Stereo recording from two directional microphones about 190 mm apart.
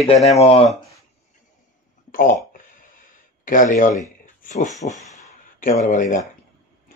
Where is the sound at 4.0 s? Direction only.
40° left (ahead or behind).